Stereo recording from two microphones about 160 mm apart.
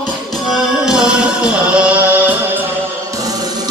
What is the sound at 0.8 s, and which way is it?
Music, 5° right (ahead or behind).